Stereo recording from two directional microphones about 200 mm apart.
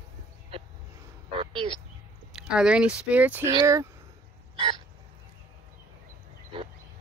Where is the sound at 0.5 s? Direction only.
30° right (ahead or behind).